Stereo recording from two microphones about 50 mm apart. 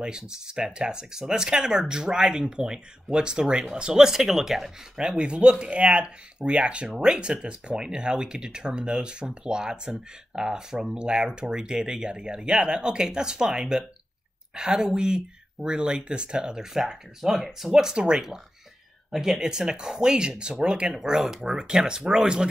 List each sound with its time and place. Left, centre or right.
0.0 s speech: centre
5.0 s speech: centre